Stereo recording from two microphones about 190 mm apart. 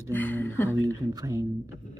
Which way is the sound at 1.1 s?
20° right (ahead or behind).